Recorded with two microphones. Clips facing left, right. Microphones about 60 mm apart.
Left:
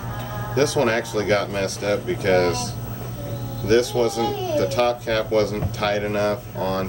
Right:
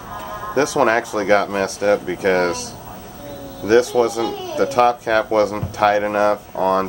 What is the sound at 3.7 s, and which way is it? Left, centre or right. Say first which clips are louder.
Speech: right 4 dB; centre.